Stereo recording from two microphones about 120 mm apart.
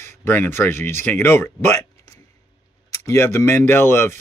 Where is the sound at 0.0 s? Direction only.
20° left (ahead or behind).